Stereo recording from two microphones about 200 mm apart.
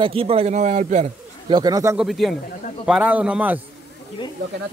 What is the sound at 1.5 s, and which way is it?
Speech, 20° right (ahead or behind).